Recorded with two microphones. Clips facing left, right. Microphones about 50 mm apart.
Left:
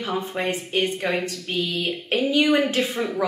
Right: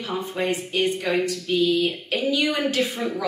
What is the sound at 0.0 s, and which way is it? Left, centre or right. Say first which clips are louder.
Speech: left 1 dB; left.